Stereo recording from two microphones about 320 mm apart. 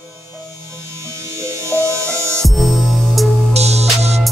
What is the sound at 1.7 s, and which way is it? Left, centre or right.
Music, centre.